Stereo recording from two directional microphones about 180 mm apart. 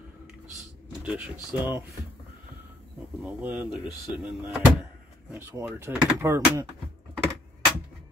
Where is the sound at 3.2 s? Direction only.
10° right (ahead or behind).